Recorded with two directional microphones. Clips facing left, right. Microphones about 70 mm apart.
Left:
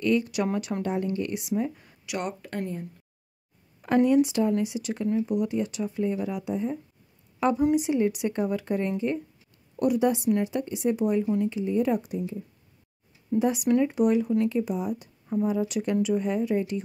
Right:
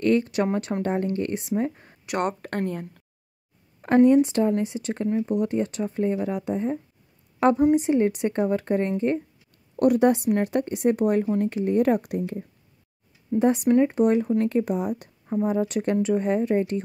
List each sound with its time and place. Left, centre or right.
0.0 s speech: right
3.8 s a woman's voice: right
9.8 s a woman's voice: right
13.4 s speech: right